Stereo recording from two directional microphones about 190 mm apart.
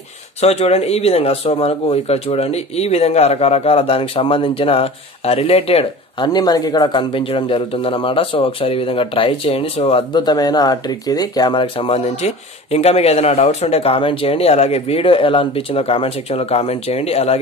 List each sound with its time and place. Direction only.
0.4 s speech: 35° left (ahead or behind)